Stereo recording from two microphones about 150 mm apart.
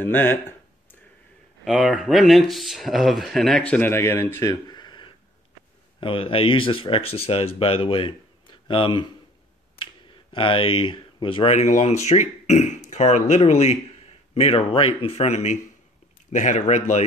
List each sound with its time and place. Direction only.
0.0 s a sound: 15° left (ahead or behind)
1.6 s speech: centre (ahead or behind); by 9.1 s 35° left (ahead or behind)
10.3 s speech: 35° left (ahead or behind)
11.5 s speech: 50° left (ahead or behind)